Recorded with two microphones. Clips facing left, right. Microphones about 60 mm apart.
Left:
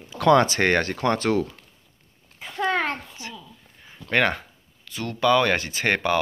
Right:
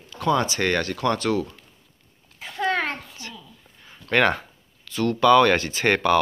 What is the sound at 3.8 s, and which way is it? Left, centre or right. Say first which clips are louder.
A child's voice: right 2 dB; centre.